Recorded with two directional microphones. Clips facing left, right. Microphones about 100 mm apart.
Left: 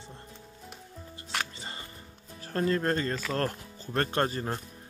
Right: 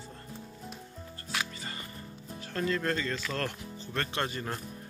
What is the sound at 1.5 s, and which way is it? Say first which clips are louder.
Music: right 1 dB; 25° left (ahead or behind).